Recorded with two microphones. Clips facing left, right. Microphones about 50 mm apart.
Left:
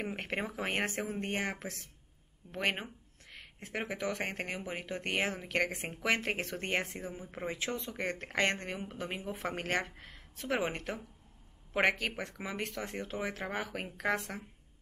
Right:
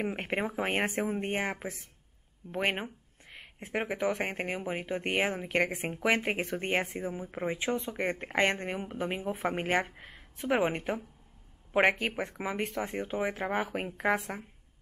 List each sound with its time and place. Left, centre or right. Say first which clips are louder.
0.0 s speech: right 5 dB; centre